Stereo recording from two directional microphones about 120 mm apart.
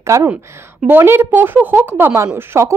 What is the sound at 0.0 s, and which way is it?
A woman's voice, 25° right (ahead or behind).